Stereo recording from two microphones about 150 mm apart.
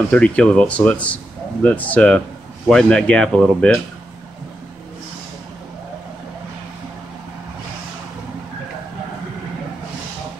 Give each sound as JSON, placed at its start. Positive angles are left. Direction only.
{"t": 0.1, "sound": "speech", "side_deg": 5}